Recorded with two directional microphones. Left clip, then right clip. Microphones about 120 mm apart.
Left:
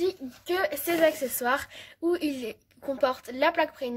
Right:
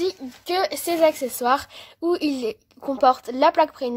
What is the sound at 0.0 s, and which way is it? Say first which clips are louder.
Speech: right 3 dB; 55° right (ahead or behind).